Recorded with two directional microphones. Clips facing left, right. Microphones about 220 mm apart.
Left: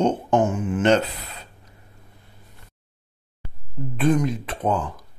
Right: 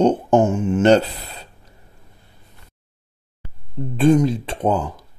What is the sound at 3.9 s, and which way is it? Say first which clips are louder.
Speech: right 6 dB; 30° right (ahead or behind).